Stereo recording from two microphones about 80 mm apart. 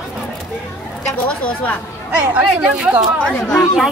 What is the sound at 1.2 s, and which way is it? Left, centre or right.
Speech, centre.